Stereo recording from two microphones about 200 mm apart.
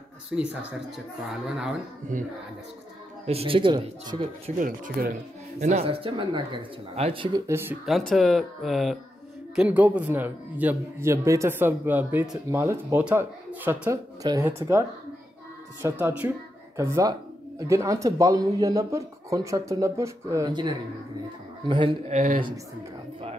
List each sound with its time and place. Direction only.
0.4 s speech: 5° right (ahead or behind)
2.1 s a man's voice: 40° right (ahead or behind)
3.3 s speech: 30° right (ahead or behind)
4.6 s speech: 40° right (ahead or behind); by 7.7 s 15° right (ahead or behind)
7.8 s a man's voice: centre (ahead or behind); by 22.4 s 40° right (ahead or behind)